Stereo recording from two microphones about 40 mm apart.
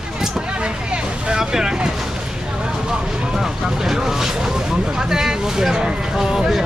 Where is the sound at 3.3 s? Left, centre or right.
Centre.